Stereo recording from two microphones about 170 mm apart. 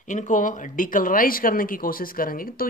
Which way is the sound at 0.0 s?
50° left (ahead or behind).